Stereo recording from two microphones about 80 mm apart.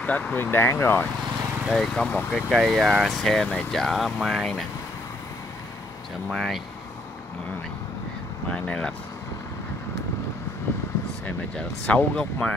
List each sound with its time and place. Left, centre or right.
0.0 s speech: centre
1.7 s speech: centre
2.5 s speech: centre
6.3 s speech: centre
8.5 s speech: centre
11.5 s speech: centre